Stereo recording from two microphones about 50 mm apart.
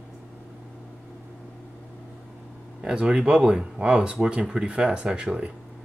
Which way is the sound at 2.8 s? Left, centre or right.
Centre.